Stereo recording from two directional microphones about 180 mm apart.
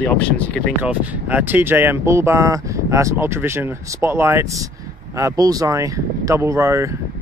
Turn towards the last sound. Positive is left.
turn(degrees=-15)  # may be behind; listen again after turning